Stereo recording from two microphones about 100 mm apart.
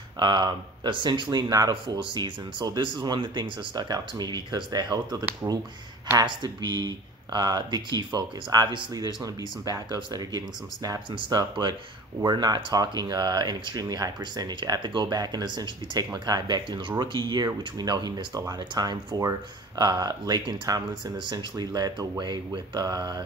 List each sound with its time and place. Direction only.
0.2 s speech: 45° right (ahead or behind)
11.1 s speech: 60° right (ahead or behind)
11.3 s speech: 45° right (ahead or behind)